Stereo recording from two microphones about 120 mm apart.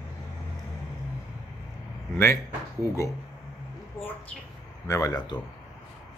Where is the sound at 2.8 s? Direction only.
25° left (ahead or behind).